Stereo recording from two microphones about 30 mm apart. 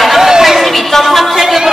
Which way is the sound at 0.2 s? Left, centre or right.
Centre.